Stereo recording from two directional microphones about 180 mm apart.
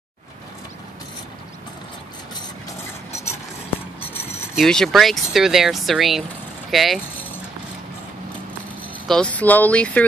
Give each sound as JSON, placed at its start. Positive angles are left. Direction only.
{"t": 3.1, "sound": "a sound", "side_deg": 15}
{"t": 4.6, "sound": "speech", "side_deg": 0}
{"t": 9.0, "sound": "speech", "side_deg": 5}